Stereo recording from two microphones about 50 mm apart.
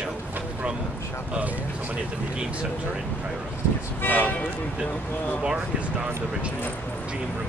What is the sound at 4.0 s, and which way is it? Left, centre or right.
Speech, left.